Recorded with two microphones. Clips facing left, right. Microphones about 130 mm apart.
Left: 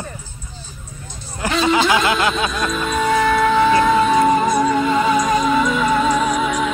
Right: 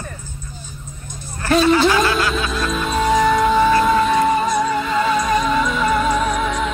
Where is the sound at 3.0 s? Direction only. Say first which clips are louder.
Right 1 dB; 10° right (ahead or behind).